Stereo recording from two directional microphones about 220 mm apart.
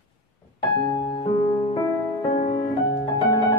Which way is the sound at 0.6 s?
15° left (ahead or behind).